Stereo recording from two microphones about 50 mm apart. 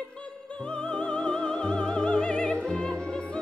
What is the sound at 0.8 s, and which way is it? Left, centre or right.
Music, left.